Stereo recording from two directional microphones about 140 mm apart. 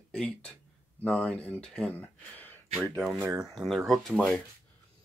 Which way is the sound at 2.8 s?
10° right (ahead or behind).